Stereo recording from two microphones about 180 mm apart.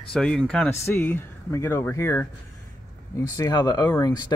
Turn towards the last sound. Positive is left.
turn(degrees=20)  # may be behind; listen again after turning